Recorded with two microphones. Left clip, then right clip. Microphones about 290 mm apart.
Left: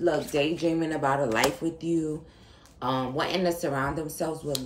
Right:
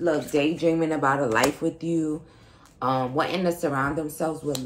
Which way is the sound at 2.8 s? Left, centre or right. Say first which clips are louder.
Right 4 dB; right.